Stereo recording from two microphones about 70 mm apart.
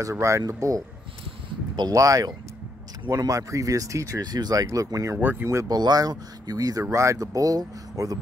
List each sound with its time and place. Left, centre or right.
0.0 s speech: right
2.0 s speech: right
4.2 s speech: right
4.6 s speech: right
5.2 s speech: right
5.7 s speech: right